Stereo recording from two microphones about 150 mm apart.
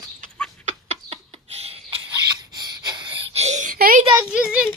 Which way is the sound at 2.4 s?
30° right (ahead or behind).